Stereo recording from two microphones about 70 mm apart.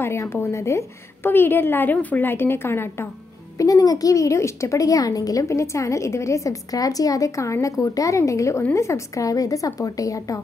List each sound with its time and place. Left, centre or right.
0.0 s a woman's voice: left
1.3 s a woman's voice: left
3.5 s speech: left